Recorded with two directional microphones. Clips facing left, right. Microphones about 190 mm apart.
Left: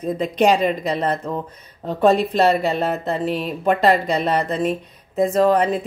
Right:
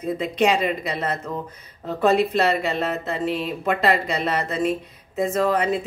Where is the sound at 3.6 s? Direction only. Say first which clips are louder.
Left 5 dB; 35° left (ahead or behind).